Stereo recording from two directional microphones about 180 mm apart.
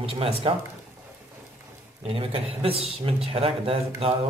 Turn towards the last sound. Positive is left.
turn(degrees=-30)  # may be behind; listen again after turning